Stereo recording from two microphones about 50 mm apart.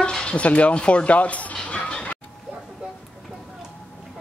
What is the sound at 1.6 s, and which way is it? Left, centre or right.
Music, left.